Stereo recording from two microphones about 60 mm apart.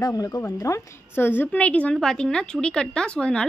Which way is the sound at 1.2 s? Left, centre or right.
Left.